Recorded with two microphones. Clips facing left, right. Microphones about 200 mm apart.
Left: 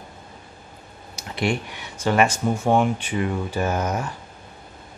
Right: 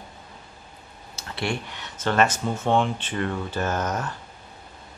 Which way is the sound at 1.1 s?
15° left (ahead or behind).